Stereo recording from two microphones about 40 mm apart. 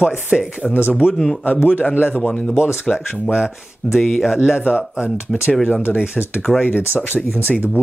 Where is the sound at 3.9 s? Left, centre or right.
Centre.